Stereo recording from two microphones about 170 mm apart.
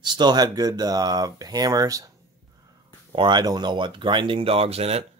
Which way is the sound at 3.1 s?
25° right (ahead or behind).